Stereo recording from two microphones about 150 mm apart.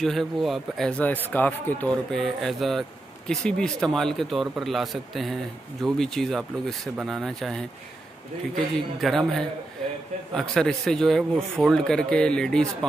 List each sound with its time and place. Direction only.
0.0 s speech: centre (ahead or behind)
8.7 s speech: centre (ahead or behind)